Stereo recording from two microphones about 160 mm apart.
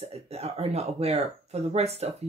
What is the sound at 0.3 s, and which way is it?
Speech, 40° right (ahead or behind).